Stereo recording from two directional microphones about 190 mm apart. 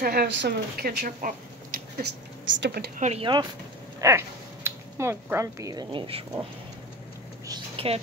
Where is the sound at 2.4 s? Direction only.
70° right (ahead or behind).